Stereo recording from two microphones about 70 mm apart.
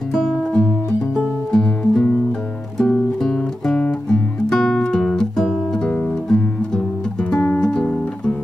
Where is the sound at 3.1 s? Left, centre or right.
Centre.